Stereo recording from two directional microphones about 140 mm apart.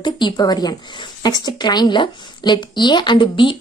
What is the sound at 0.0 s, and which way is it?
Speech, 30° left (ahead or behind).